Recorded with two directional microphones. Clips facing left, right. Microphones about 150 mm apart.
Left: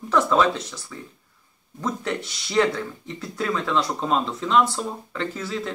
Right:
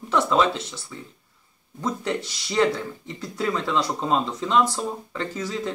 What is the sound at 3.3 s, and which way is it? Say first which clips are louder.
Speech: even; 30° right (ahead or behind).